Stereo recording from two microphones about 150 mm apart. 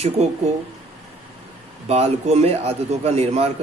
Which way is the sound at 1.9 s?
45° right (ahead or behind).